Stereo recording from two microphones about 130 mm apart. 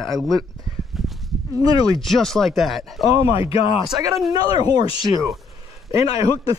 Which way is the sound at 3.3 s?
45° left (ahead or behind).